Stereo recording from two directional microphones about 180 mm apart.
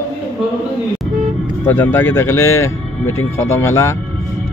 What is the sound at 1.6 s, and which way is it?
Speech, 10° left (ahead or behind).